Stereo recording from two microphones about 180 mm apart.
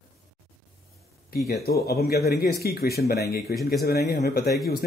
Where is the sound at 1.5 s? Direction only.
60° left (ahead or behind).